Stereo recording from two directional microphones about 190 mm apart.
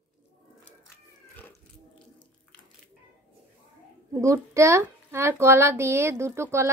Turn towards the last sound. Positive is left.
turn(degrees=-15)  # may be behind; listen again after turning